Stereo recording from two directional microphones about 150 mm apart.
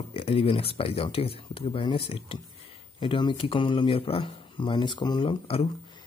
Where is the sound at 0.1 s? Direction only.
40° left (ahead or behind).